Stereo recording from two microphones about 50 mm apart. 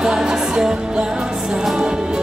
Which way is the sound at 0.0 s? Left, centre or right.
Centre.